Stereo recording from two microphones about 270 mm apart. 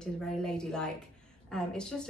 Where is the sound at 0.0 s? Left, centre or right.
Centre.